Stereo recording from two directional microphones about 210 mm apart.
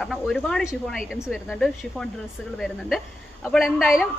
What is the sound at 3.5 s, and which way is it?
Speech, centre (ahead or behind).